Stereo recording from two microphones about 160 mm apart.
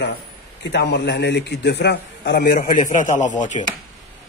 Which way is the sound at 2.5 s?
55° left (ahead or behind).